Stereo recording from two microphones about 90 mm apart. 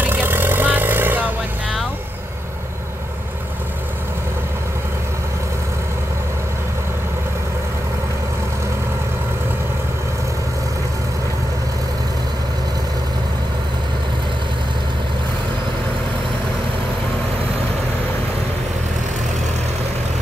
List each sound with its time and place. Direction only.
0.0 s vehicle: 20° right (ahead or behind)